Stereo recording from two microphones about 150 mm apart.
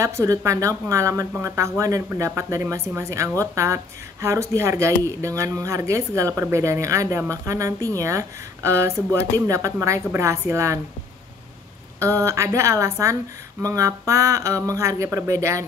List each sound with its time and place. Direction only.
0.0 s speech: 20° right (ahead or behind)
12.0 s speech: 20° right (ahead or behind)